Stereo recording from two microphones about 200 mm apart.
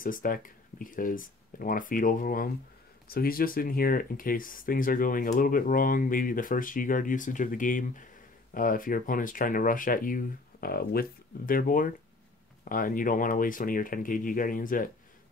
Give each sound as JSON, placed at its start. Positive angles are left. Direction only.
{"t": 0.0, "sound": "speech", "side_deg": 45}